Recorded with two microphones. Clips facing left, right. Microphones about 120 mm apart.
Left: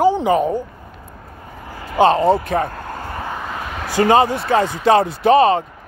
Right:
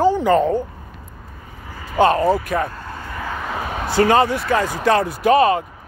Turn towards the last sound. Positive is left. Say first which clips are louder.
# left 2 dB
turn(degrees=25)  # may be behind; listen again after turning